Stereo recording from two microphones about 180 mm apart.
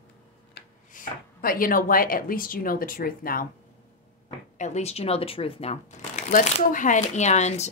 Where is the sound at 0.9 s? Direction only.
50° left (ahead or behind).